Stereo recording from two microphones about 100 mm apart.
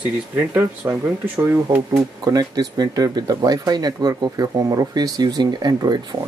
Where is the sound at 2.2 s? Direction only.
40° right (ahead or behind).